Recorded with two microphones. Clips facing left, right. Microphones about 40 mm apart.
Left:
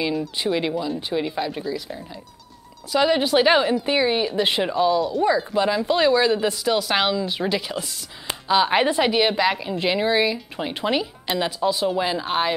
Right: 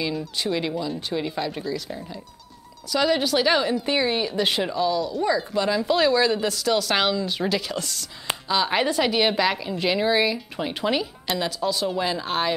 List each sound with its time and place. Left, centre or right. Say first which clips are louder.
0.4 s speech: left 1 dB; centre
2.9 s speech: left 3 dB; centre
3.8 s speech: left 2 dB; centre
9.0 s speech: left 2 dB; centre